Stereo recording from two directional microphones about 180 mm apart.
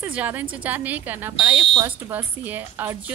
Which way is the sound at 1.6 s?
25° right (ahead or behind).